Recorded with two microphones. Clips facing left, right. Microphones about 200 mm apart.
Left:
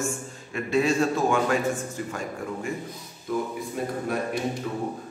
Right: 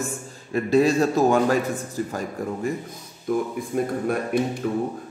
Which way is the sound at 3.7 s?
50° right (ahead or behind).